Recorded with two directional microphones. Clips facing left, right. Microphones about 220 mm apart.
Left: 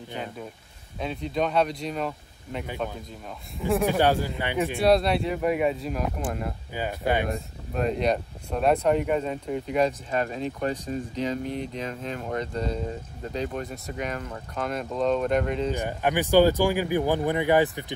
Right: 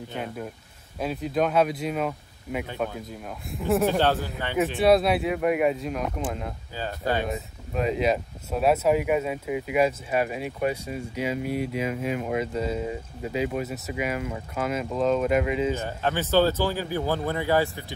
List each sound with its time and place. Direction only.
0.1 s speech: centre (ahead or behind)
4.0 s speech: 15° left (ahead or behind)
4.7 s speech: centre (ahead or behind)
6.7 s speech: 15° left (ahead or behind)
7.2 s speech: centre (ahead or behind)
15.7 s speech: 15° left (ahead or behind)